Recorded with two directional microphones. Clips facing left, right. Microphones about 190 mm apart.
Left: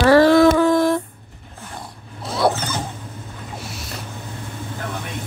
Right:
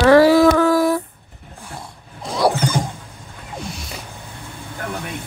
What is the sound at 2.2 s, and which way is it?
Zipper, 5° left (ahead or behind).